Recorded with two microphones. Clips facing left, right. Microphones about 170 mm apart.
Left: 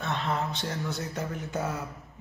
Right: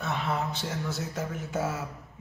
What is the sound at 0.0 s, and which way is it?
Speech, 5° right (ahead or behind).